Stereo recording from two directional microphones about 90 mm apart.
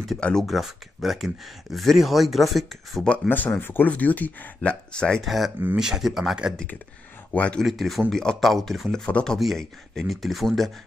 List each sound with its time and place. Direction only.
0.2 s speech: 5° left (ahead or behind)
3.1 s speech: 15° left (ahead or behind); by 6.5 s 5° right (ahead or behind)
7.3 s speech: 15° left (ahead or behind)
7.6 s speech: centre (ahead or behind)